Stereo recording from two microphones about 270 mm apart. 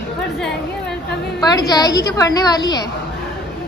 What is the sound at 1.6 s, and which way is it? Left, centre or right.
A woman's voice, centre.